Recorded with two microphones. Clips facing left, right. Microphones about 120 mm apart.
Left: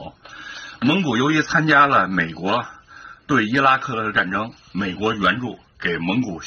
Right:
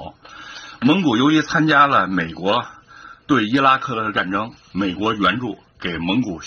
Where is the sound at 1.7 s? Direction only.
5° right (ahead or behind).